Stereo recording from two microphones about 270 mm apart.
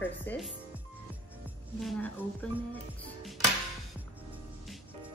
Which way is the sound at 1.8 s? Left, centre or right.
Centre.